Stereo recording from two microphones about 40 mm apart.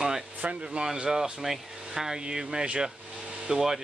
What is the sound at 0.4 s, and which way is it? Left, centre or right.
Speech, right.